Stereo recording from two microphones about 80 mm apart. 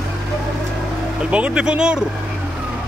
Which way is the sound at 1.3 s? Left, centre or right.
Centre.